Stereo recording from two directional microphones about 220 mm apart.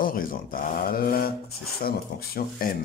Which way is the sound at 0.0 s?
40° left (ahead or behind).